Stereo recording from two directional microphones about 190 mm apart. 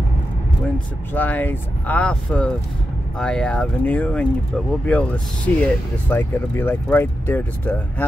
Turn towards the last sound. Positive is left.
turn(degrees=10)  # may be behind; listen again after turning